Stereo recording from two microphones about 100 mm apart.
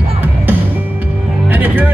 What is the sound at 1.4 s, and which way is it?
Music, 15° right (ahead or behind).